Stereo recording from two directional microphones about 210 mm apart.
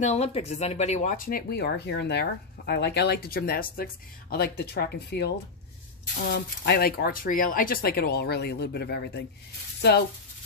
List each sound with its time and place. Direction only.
0.0 s speech: 30° left (ahead or behind); by 10.0 s 50° left (ahead or behind)